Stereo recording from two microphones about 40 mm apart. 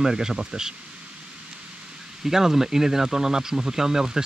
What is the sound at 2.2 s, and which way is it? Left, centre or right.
Speech, centre.